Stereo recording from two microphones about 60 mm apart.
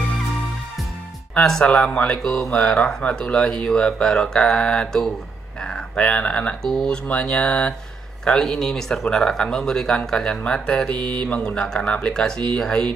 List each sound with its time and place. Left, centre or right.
1.3 s speech: centre
2.2 s speech: centre
2.5 s speech: left